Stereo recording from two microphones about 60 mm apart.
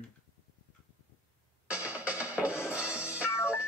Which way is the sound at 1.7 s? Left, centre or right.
Right.